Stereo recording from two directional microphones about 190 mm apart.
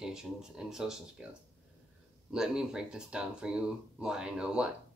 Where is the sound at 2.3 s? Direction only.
5° right (ahead or behind).